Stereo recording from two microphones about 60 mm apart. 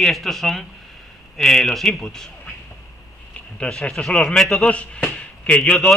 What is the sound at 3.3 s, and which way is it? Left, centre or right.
Speech, centre.